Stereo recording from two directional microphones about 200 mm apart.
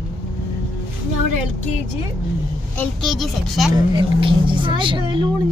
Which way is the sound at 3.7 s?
25° right (ahead or behind).